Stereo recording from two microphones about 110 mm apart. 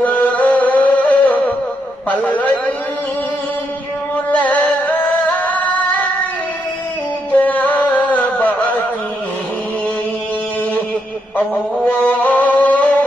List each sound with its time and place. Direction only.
0.0 s music: 15° left (ahead or behind)
2.0 s a sound: 15° left (ahead or behind)
4.4 s singing: 15° left (ahead or behind)
7.2 s music: 15° left (ahead or behind)
11.3 s music: 15° left (ahead or behind)